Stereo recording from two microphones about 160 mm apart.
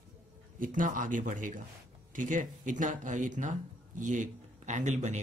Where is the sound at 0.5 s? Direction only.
55° right (ahead or behind).